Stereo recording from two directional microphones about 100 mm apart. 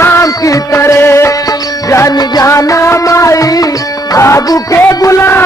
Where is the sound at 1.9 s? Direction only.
35° left (ahead or behind).